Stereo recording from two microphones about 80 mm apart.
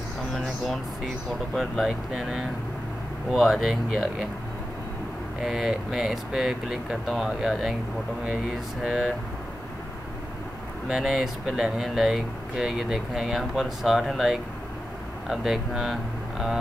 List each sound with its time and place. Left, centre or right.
1.5 s speech: centre
5.4 s speech: centre
8.8 s speech: centre
10.9 s speech: centre